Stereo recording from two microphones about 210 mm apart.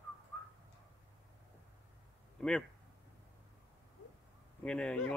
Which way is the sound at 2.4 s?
5° left (ahead or behind).